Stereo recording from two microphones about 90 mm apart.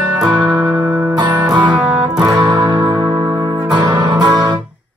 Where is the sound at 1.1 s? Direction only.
55° right (ahead or behind).